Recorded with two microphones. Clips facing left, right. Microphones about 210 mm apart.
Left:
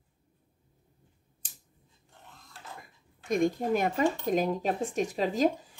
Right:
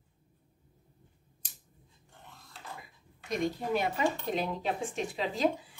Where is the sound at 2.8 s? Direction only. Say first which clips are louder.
Even; 50° left (ahead or behind).